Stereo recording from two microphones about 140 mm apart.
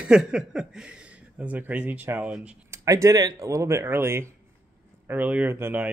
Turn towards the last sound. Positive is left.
turn(degrees=-15)  # may be behind; listen again after turning